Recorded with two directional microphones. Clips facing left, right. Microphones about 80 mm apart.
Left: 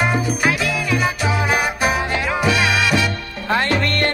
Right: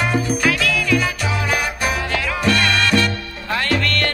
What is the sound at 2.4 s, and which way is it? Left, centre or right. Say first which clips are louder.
Music: right 1 dB; centre.